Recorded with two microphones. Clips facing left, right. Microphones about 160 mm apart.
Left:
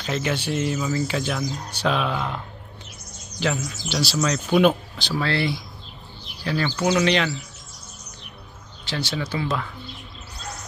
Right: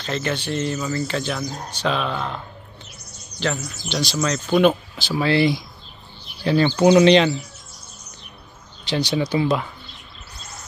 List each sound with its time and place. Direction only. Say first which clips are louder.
0.0 s speech: even; 5° left (ahead or behind)
5.1 s speech: right 6 dB; 15° right (ahead or behind)
8.8 s speech: right 6 dB; 20° right (ahead or behind)